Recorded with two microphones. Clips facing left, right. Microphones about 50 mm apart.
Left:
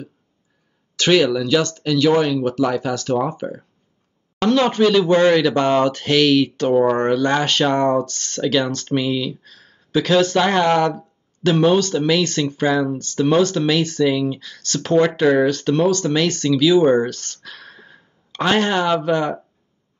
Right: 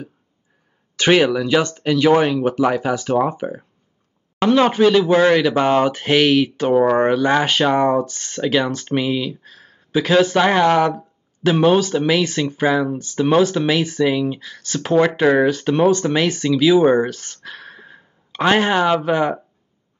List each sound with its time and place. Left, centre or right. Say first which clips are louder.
0.9 s speech: right 1 dB; right